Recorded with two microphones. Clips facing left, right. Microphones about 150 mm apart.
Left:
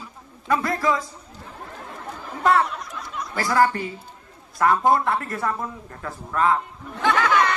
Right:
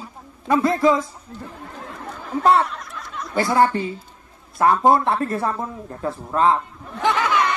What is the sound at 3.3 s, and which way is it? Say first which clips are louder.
A man's voice: right 3 dB; 25° right (ahead or behind).